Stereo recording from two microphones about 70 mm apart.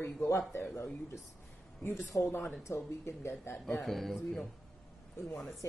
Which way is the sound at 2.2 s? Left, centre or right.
Left.